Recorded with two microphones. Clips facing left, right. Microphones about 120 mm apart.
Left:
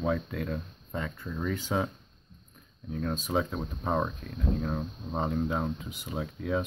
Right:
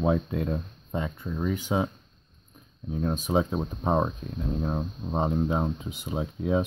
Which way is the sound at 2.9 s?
20° right (ahead or behind).